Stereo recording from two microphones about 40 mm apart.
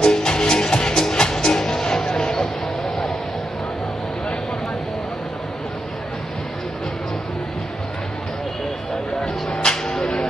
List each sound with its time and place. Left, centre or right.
0.0 s music: left
9.2 s music: centre